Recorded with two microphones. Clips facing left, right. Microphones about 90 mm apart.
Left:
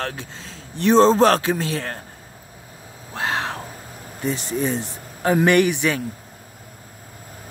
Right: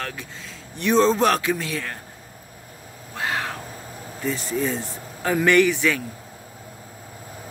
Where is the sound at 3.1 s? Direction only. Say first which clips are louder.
Left 2 dB; 30° left (ahead or behind).